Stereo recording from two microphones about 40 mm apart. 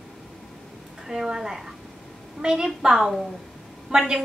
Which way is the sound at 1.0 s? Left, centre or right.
Centre.